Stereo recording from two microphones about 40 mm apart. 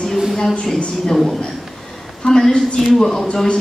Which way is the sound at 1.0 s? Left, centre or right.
Centre.